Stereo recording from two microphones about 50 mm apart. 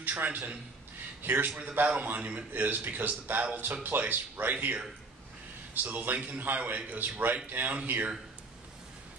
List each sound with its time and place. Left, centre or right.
0.0 s a man's voice: right
1.6 s a man's voice: right
2.5 s a man's voice: right
5.8 s a man's voice: right